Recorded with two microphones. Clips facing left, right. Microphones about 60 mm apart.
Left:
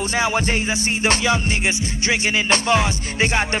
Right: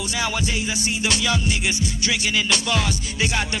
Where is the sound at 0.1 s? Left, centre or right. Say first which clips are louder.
Left 5 dB; left.